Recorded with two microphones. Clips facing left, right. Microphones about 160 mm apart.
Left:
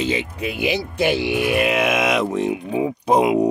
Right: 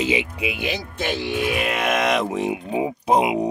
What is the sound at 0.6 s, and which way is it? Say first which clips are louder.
Speech: left 6 dB; 10° left (ahead or behind).